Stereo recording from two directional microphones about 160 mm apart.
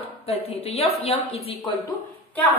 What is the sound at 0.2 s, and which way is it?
A woman's voice, 35° left (ahead or behind).